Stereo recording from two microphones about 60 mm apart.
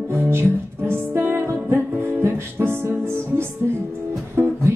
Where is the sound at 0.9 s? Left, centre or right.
Right.